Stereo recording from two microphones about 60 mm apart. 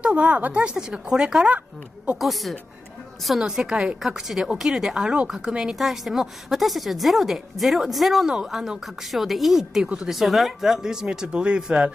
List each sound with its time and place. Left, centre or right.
0.0 s speech: right
2.1 s a woman's voice: centre
5.8 s a woman's voice: centre